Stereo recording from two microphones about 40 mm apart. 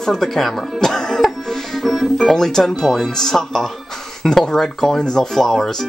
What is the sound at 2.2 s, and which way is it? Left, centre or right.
Speech, centre.